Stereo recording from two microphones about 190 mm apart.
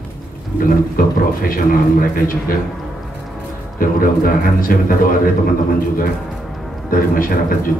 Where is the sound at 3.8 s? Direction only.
50° left (ahead or behind).